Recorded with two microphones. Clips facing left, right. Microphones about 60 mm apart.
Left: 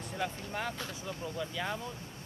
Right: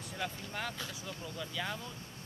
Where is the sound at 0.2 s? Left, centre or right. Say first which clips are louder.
Left 3 dB; centre.